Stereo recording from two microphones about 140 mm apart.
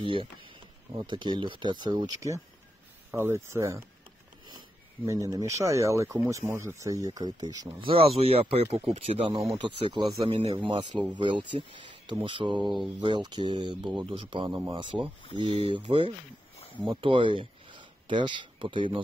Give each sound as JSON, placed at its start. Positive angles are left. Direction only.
{"t": 0.0, "sound": "speech", "side_deg": -40}
{"t": 5.0, "sound": "speech", "side_deg": -20}
{"t": 7.9, "sound": "speech", "side_deg": -40}